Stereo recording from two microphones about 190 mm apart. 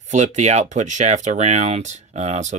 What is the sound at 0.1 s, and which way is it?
Speech, 40° right (ahead or behind).